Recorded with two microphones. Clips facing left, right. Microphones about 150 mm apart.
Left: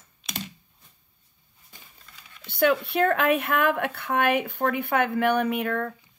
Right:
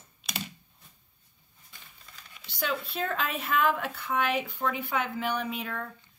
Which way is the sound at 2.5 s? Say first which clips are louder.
Left 11 dB; 60° left (ahead or behind).